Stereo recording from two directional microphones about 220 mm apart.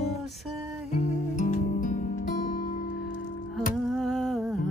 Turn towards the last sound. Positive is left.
turn(degrees=0)  # may be behind; listen again after turning